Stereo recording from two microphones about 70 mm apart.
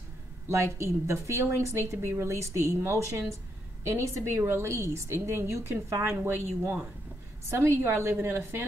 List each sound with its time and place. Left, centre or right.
0.7 s a woman's voice: right
6.2 s a woman's voice: right